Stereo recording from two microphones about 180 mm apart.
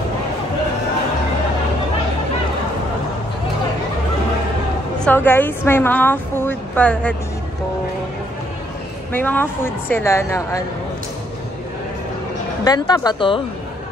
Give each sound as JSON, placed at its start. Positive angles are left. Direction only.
{"t": 5.0, "sound": "a woman's voice", "side_deg": 10}
{"t": 9.1, "sound": "a woman's voice", "side_deg": 10}
{"t": 12.6, "sound": "speech", "side_deg": 20}